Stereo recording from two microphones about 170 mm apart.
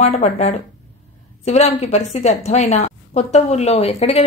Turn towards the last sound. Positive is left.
turn(degrees=40)  # may be behind; listen again after turning